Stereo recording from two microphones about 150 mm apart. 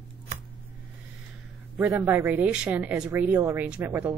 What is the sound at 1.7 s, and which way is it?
Speech, 5° right (ahead or behind).